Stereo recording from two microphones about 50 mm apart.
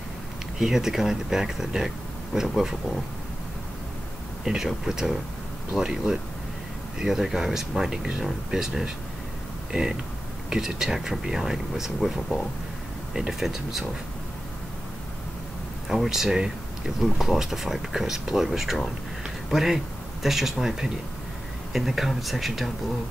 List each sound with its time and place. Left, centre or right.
0.6 s speech: centre
4.6 s speech: centre
13.1 s speech: centre
15.9 s speech: centre